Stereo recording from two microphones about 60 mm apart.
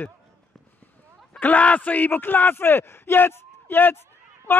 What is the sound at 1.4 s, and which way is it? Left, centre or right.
Speech, left.